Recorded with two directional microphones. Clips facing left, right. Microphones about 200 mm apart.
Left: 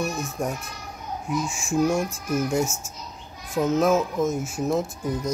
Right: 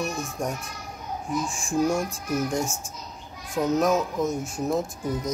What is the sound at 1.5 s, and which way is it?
Speech, 5° left (ahead or behind).